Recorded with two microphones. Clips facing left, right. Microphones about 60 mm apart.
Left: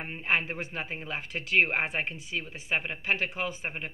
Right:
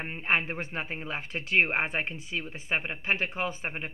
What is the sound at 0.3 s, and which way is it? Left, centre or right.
Speech, right.